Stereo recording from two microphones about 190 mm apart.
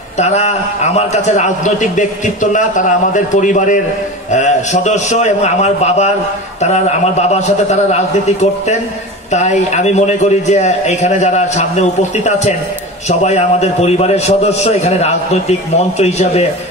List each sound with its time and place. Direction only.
0.2 s a man's voice: 35° left (ahead or behind)